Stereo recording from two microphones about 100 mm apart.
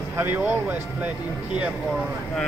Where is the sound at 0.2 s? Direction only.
20° right (ahead or behind).